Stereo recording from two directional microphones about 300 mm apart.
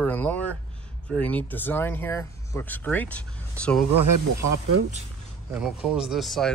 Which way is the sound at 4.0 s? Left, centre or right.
Right.